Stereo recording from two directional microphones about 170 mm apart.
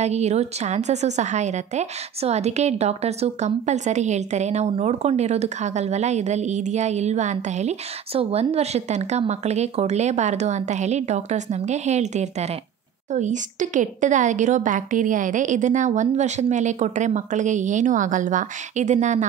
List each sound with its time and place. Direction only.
0.0 s a woman's voice: 40° right (ahead or behind)